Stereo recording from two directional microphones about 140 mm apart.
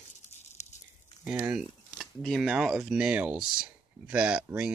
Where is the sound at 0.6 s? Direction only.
55° left (ahead or behind).